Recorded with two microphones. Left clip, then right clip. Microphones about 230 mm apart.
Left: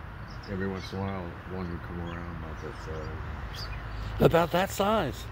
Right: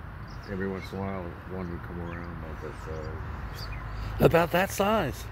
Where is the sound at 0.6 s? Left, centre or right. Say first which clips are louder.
Right 1 dB; left.